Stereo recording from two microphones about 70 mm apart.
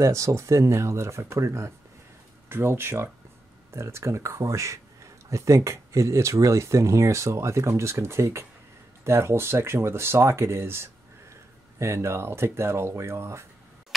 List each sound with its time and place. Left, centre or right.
0.0 s speech: right